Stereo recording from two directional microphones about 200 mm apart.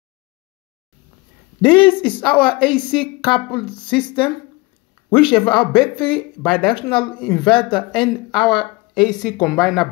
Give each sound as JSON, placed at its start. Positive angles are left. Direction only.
{"t": 1.6, "sound": "speech", "side_deg": 25}